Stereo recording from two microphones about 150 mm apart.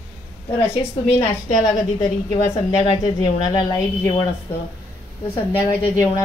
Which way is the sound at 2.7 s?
25° left (ahead or behind).